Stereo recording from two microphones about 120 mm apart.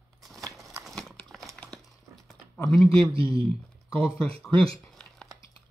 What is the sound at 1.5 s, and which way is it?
Dog, 5° left (ahead or behind).